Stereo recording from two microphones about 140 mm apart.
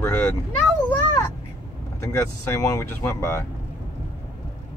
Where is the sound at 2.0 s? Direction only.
25° left (ahead or behind).